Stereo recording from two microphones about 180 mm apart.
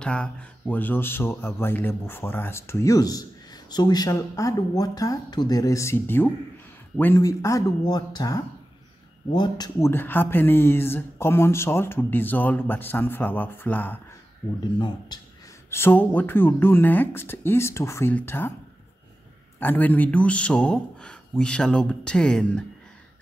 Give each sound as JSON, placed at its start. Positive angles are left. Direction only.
{"t": 0.0, "sound": "speech", "side_deg": 5}
{"t": 14.6, "sound": "speech", "side_deg": 25}
{"t": 15.7, "sound": "speech", "side_deg": 10}
{"t": 19.6, "sound": "speech", "side_deg": 10}